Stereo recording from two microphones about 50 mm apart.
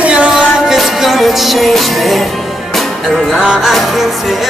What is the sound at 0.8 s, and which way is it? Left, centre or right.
Music, centre.